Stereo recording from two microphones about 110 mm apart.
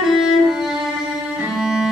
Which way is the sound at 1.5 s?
5° right (ahead or behind).